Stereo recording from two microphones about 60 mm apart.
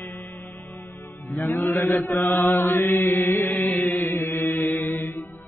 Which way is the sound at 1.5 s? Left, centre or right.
Left.